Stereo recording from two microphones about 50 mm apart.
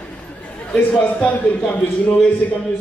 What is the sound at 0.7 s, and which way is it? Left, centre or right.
A man's voice, left.